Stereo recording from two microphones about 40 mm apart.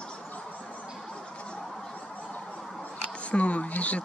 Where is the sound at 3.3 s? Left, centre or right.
Left.